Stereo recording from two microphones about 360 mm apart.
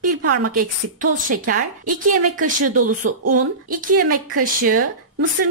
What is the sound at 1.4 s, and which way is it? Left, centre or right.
A woman's voice, right.